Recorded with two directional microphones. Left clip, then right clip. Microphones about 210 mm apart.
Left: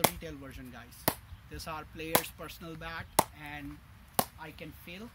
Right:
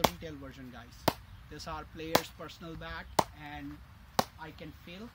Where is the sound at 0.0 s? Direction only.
Centre (ahead or behind).